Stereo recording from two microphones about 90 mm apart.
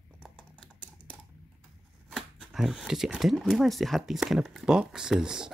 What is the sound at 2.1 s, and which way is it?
Speech, centre (ahead or behind).